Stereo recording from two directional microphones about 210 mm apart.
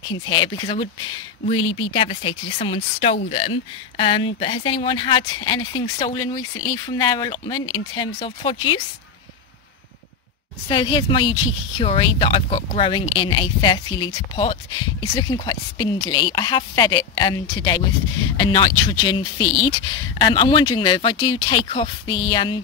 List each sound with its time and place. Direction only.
0.1 s speech: 20° left (ahead or behind)
6.5 s speech: 75° left (ahead or behind)
7.0 s speech: 20° left (ahead or behind)
10.7 s speech: 25° left (ahead or behind)